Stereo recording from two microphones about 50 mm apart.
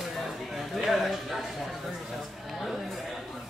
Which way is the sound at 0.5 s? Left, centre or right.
Centre.